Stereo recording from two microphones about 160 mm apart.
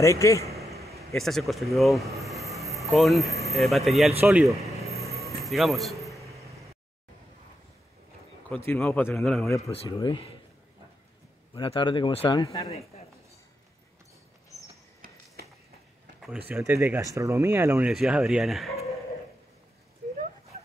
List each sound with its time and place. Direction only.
0.0 s a man's voice: 20° left (ahead or behind)
1.1 s speech: centre (ahead or behind)
2.1 s rub: centre (ahead or behind)
3.4 s speech: centre (ahead or behind)
5.4 s a sound: centre (ahead or behind)
8.5 s a man's voice: 15° left (ahead or behind)
9.1 s speech: centre (ahead or behind)
9.6 s speech: 40° left (ahead or behind)
9.8 s speech: 30° left (ahead or behind)
11.5 s speech: 30° left (ahead or behind)
15.4 s a sound: 90° right
16.2 s speech: 5° right (ahead or behind)
16.5 s speech: 15° right (ahead or behind); by 18.8 s centre (ahead or behind)